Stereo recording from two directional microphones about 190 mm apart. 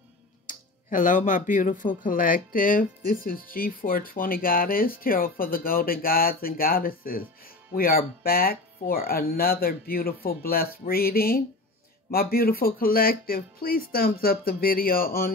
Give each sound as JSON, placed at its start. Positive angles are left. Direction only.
{"t": 0.5, "sound": "speech", "side_deg": 45}